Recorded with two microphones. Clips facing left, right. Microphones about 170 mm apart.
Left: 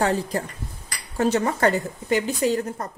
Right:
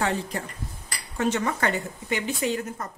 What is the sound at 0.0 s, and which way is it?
Speech, 35° left (ahead or behind).